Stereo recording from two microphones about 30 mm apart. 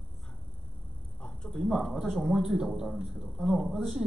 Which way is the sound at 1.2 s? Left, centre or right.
Left.